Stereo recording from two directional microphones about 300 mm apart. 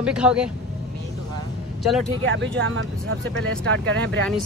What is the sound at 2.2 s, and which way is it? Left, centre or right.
Speech, right.